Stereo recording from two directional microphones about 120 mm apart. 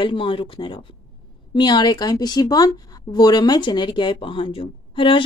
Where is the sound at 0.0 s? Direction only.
45° left (ahead or behind).